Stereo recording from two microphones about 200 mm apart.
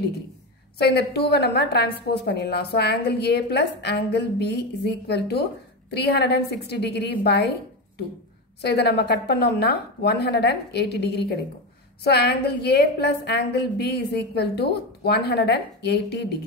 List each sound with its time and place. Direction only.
0.7 s a woman's voice: 55° left (ahead or behind)
8.5 s a woman's voice: 55° left (ahead or behind)